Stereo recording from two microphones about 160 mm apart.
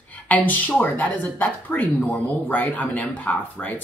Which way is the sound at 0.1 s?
10° left (ahead or behind).